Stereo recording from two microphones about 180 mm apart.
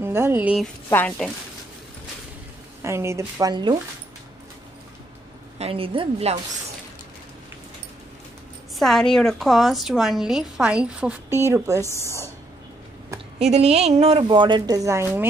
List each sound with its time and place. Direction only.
0.0 s a woman's voice: 15° right (ahead or behind)
0.8 s a woman's voice: 10° left (ahead or behind)
2.8 s speech: 15° right (ahead or behind)
5.6 s a woman's voice: 30° right (ahead or behind)
8.7 s a woman's voice: centre (ahead or behind); by 11.8 s 15° right (ahead or behind)
11.8 s a woman's voice: 15° left (ahead or behind)
13.4 s a woman's voice: 35° right (ahead or behind); by 15.2 s 15° right (ahead or behind)